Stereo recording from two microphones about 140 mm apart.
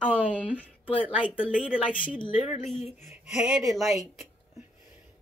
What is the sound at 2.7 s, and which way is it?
Speech, 50° left (ahead or behind).